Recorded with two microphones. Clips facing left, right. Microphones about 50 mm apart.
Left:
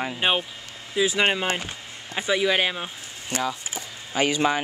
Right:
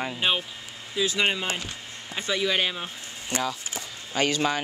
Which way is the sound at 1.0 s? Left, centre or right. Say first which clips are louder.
Left 3 dB; centre.